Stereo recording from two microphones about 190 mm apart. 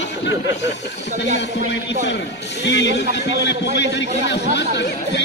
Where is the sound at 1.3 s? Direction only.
65° left (ahead or behind).